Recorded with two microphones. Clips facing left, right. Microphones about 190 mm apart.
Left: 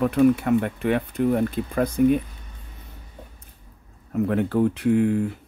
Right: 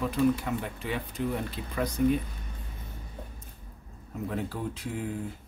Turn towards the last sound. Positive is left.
turn(degrees=65)  # may be behind; listen again after turning